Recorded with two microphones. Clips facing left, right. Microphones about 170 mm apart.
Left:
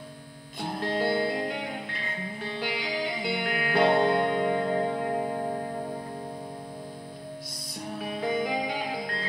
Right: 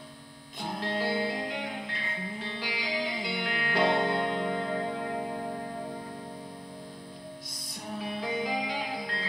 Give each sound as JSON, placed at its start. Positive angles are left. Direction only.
{"t": 0.7, "sound": "music", "side_deg": 55}
{"t": 2.6, "sound": "music", "side_deg": 55}
{"t": 8.2, "sound": "music", "side_deg": 55}